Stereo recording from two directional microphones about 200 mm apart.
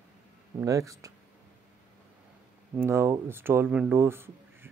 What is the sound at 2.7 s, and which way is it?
Speech, 10° right (ahead or behind).